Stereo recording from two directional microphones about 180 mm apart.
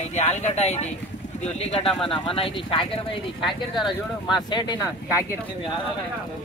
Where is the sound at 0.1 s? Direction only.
40° left (ahead or behind); by 4.7 s 25° left (ahead or behind).